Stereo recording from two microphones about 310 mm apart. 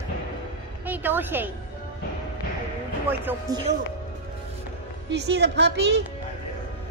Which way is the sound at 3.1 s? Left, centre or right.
Centre.